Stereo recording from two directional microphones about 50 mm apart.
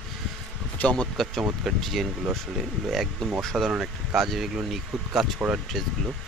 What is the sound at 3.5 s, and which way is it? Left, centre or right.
Speech, centre.